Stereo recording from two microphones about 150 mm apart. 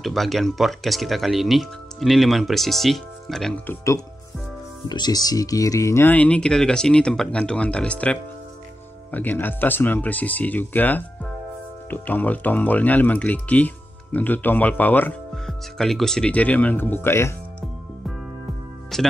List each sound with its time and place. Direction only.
0.0 s speech: centre (ahead or behind)
3.6 s speech: 20° left (ahead or behind)
18.9 s speech: centre (ahead or behind)